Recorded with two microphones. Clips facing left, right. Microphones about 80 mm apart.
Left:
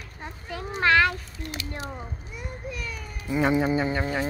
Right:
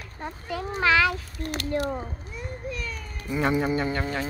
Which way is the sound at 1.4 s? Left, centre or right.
Right.